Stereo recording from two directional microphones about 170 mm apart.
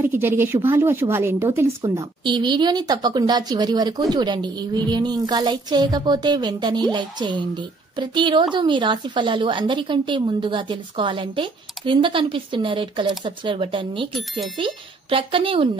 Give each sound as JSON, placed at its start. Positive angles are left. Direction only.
{"t": 0.0, "sound": "a woman's voice", "side_deg": -10}